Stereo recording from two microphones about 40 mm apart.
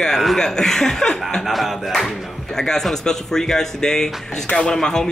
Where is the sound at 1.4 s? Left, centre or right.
Centre.